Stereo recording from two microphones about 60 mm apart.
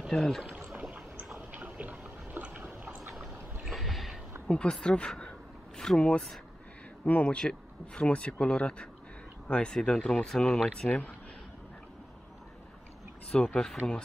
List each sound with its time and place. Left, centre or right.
0.1 s speech: centre
1.5 s a sound: right
3.6 s boat: centre
4.5 s speech: centre
7.3 s speech: centre
10.9 s speech: left
13.4 s speech: centre